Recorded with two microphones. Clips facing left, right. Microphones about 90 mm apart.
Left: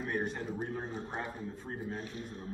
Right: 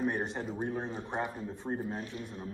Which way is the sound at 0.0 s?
25° right (ahead or behind).